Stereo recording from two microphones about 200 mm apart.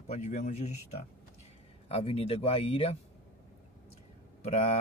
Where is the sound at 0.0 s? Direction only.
35° left (ahead or behind).